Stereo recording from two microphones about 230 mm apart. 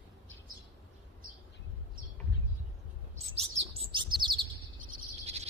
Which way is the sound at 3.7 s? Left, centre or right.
Right.